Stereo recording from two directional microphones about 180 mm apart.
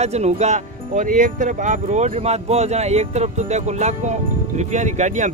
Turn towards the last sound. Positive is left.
turn(degrees=-40)  # may be behind; listen again after turning